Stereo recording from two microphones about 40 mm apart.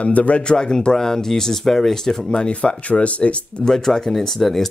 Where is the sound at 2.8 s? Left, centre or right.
Left.